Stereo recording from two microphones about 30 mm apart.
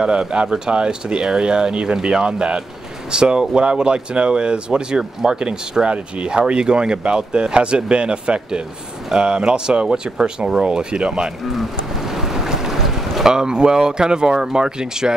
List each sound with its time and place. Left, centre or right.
0.2 s speech: right
2.0 s speech: centre
2.2 s speech: right
11.5 s a sound: centre
12.4 s boat: centre
13.2 s speech: right